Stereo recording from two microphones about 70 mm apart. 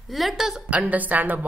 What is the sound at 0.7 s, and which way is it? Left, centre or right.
Speech, right.